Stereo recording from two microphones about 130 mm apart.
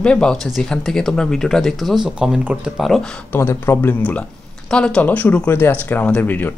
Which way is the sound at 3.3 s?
20° left (ahead or behind).